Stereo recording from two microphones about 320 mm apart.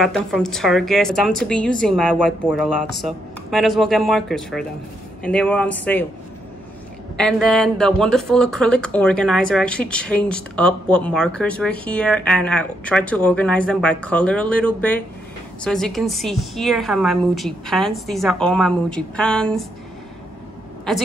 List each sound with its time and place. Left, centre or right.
0.0 s speech: centre
7.2 s speech: centre